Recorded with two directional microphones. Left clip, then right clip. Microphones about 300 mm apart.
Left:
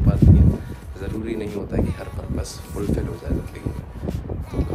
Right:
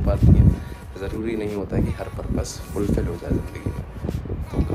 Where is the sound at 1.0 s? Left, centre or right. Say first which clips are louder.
Right 2 dB; centre.